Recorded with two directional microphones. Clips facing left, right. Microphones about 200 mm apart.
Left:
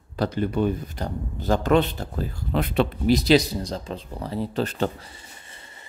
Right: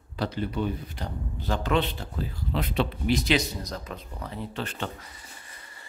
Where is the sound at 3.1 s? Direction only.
35° left (ahead or behind).